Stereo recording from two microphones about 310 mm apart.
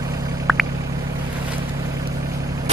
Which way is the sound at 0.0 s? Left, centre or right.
Centre.